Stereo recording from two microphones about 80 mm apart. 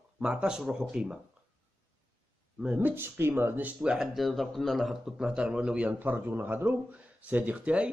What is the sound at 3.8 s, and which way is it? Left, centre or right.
Speech, centre.